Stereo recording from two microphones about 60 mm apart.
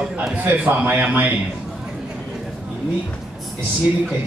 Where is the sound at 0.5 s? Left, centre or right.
Right.